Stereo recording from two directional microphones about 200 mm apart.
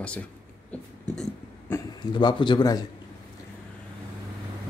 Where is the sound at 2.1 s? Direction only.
25° left (ahead or behind).